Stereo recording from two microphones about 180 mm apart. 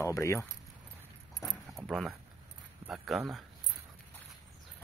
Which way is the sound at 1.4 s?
Centre (ahead or behind).